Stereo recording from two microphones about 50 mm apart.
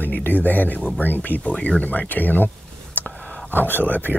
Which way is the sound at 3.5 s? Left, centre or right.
Left.